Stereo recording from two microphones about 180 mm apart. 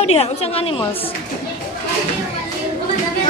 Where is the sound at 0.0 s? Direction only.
35° left (ahead or behind).